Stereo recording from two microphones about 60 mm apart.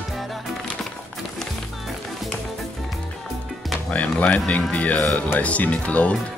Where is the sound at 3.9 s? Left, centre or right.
Left.